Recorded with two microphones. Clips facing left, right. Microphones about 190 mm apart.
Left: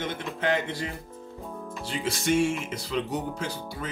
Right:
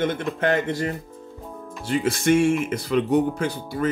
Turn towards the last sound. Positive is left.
turn(degrees=-55)  # may be behind; listen again after turning